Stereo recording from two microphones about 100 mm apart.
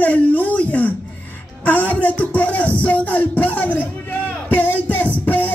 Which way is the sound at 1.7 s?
15° left (ahead or behind).